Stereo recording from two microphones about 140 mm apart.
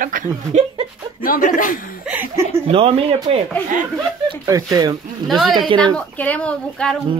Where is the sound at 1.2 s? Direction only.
80° left.